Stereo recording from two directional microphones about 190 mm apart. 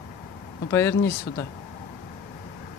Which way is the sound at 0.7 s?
15° left (ahead or behind).